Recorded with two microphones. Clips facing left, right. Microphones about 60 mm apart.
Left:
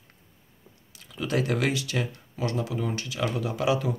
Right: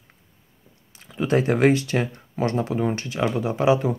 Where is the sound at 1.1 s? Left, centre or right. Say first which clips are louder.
Right 6 dB; right.